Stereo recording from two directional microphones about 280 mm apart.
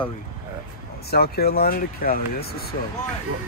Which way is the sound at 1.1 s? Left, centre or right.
Left.